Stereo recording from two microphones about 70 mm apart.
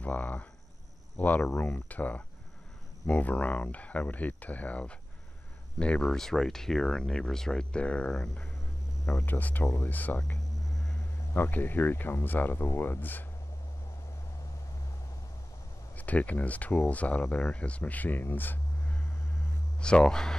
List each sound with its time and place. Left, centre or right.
0.0 s speech: left
9.0 s speech: left
16.0 s speech: left
19.8 s speech: centre